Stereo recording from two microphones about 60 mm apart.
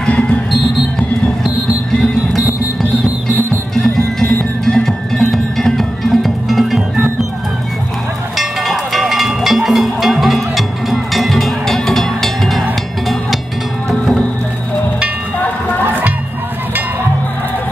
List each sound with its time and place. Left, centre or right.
0.0 s music: centre
3.7 s music: centre
8.4 s cattle: centre
13.8 s music: centre
15.8 s music: right